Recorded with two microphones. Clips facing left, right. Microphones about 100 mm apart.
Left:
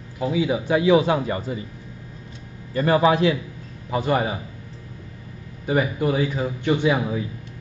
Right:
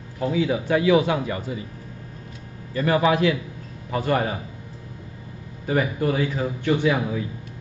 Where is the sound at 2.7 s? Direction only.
30° left (ahead or behind).